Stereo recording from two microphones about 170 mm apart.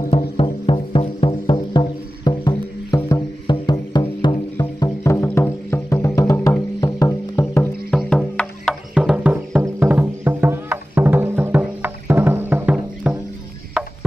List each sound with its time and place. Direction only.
0.4 s music: 30° left (ahead or behind)
7.9 s music: 5° left (ahead or behind)